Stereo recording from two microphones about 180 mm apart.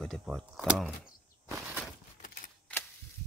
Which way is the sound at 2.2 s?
45° left (ahead or behind).